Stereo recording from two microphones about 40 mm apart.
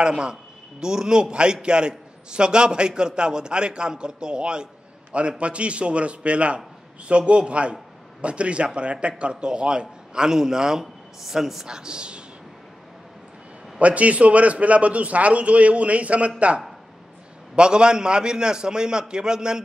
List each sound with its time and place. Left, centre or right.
0.0 s a man's voice: right; by 11.6 s centre
11.6 s a man's voice: centre
13.7 s a man's voice: right
17.6 s a man's voice: right